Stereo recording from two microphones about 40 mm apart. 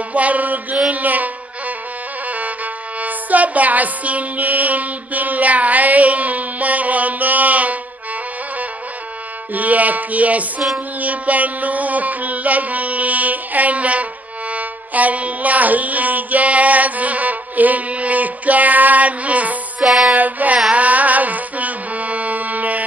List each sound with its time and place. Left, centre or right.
0.1 s music: right
9.5 s a sound: right
11.0 s music: right
19.8 s music: centre
20.2 s child singing: right
20.7 s music: right